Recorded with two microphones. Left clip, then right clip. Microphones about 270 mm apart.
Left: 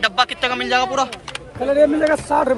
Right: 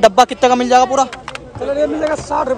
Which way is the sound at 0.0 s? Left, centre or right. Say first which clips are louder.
Right 8 dB; centre.